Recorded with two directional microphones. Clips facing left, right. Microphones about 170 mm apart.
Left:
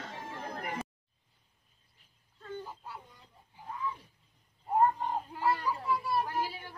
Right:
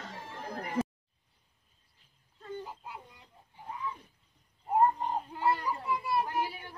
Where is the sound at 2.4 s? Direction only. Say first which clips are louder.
Right 1 dB; 10° right (ahead or behind).